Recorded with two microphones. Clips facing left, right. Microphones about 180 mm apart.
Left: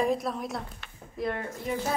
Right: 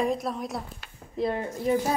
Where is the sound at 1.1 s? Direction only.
30° right (ahead or behind).